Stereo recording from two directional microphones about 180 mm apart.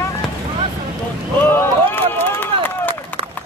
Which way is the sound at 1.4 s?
10° left (ahead or behind).